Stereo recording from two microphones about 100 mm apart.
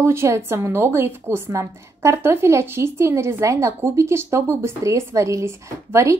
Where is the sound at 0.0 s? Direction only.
25° right (ahead or behind).